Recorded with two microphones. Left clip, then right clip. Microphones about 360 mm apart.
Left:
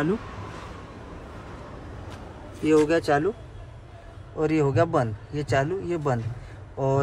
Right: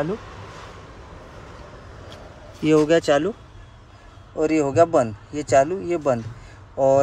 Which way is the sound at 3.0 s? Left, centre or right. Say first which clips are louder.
Right 4 dB; centre.